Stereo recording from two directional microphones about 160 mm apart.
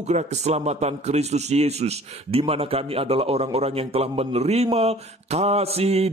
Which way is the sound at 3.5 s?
40° right (ahead or behind).